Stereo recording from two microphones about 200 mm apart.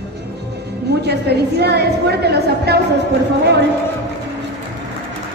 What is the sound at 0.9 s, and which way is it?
A woman's voice, 55° right (ahead or behind).